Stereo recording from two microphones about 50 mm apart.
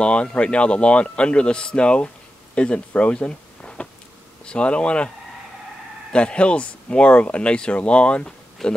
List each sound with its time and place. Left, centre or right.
0.0 s speech: left
6.1 s speech: left
8.6 s speech: centre